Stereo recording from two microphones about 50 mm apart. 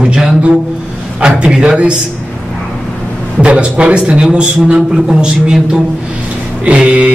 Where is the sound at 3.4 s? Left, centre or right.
Right.